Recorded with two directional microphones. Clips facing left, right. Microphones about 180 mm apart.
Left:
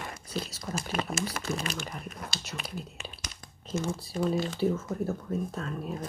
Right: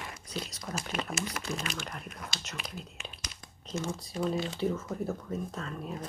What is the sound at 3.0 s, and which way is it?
Crumpling, 5° left (ahead or behind).